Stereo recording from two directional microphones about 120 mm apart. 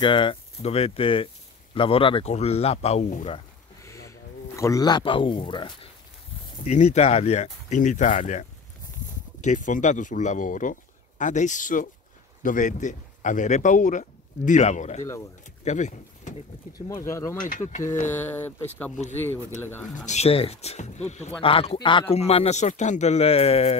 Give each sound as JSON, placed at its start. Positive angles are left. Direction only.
{"t": 0.0, "sound": "speech", "side_deg": 45}
{"t": 2.3, "sound": "speech", "side_deg": 60}
{"t": 3.8, "sound": "speech", "side_deg": 25}
{"t": 6.6, "sound": "speech", "side_deg": 75}
{"t": 16.7, "sound": "speech", "side_deg": 30}
{"t": 17.5, "sound": "speech", "side_deg": 90}
{"t": 18.3, "sound": "speech", "side_deg": 15}
{"t": 20.1, "sound": "speech", "side_deg": 60}
{"t": 21.4, "sound": "speech", "side_deg": 50}
{"t": 22.1, "sound": "speech", "side_deg": 55}